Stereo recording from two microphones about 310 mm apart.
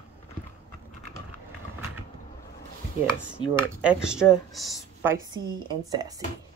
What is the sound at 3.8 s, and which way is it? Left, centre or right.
A woman's voice, centre.